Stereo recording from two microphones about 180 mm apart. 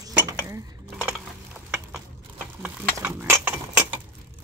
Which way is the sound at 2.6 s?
10° right (ahead or behind).